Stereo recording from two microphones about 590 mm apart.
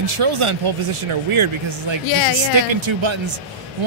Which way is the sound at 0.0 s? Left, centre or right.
Right.